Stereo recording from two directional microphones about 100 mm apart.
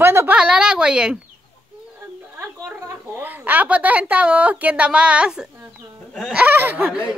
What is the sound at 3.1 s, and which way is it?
A woman's voice, 20° right (ahead or behind).